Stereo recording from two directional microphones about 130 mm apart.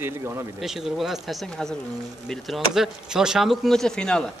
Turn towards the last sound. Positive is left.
turn(degrees=5)  # may be behind; listen again after turning